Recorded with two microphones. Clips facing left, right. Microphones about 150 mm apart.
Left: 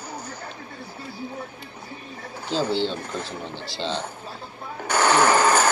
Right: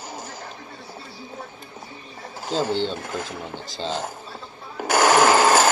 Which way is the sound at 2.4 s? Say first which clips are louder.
Even; 45° right (ahead or behind).